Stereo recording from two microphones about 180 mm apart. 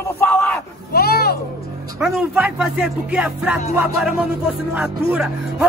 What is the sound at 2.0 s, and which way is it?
Speech, 5° right (ahead or behind).